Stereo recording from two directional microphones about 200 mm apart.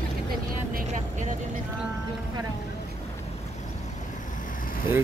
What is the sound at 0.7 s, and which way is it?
Vehicle, 40° right (ahead or behind).